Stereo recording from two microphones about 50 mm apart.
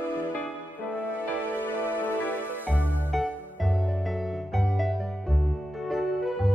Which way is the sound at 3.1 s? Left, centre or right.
Centre.